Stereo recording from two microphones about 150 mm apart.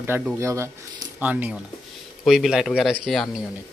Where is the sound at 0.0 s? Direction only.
15° right (ahead or behind).